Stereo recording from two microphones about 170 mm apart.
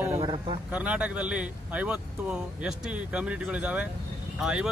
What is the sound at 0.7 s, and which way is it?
Speech, 5° right (ahead or behind).